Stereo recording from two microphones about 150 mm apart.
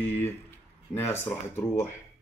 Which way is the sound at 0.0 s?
15° left (ahead or behind).